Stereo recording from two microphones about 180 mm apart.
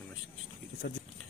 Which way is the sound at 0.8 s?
65° left (ahead or behind).